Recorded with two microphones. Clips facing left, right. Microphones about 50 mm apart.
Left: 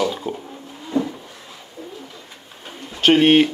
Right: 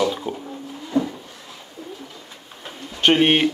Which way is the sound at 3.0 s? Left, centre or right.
Centre.